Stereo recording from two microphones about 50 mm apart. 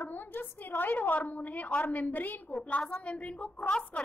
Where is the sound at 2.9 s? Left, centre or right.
Left.